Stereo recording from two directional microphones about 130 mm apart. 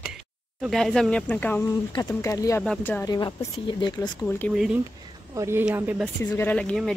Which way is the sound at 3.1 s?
35° left (ahead or behind).